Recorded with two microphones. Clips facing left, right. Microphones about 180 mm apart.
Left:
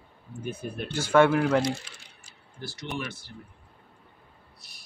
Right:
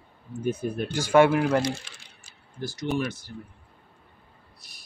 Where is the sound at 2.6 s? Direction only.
45° right (ahead or behind).